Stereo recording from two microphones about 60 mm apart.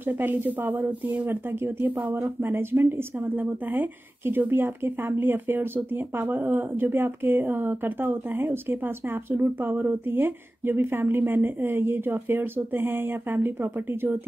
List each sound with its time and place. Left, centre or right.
0.0 s speech: right